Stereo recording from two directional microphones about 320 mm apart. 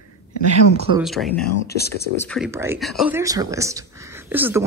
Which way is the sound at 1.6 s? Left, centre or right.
Left.